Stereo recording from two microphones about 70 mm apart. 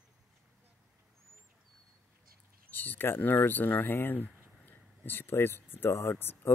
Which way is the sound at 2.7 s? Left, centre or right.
Left.